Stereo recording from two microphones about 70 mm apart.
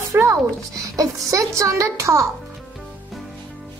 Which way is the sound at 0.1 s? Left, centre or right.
Right.